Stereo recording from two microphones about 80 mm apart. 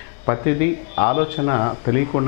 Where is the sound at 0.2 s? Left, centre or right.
Left.